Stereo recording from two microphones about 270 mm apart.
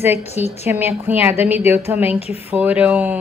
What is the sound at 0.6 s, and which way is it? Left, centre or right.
A woman's voice, centre.